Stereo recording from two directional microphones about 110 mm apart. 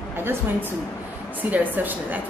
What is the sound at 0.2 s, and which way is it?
A woman's voice, 20° right (ahead or behind).